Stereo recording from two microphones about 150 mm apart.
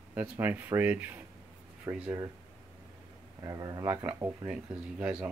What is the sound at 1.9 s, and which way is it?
Speech, 25° right (ahead or behind).